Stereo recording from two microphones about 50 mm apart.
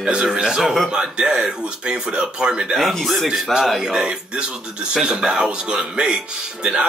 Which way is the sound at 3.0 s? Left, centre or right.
Centre.